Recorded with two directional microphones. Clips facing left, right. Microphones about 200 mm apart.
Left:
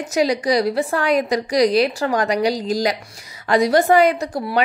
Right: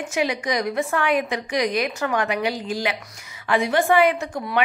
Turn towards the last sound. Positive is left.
turn(degrees=35)  # may be behind; listen again after turning